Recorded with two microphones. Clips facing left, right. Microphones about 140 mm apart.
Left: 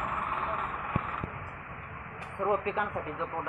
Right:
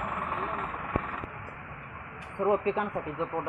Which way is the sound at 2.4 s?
25° right (ahead or behind).